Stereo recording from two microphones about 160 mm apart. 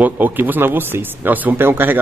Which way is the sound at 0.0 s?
10° right (ahead or behind).